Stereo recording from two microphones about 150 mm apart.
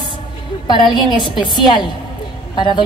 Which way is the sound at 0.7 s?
30° left (ahead or behind).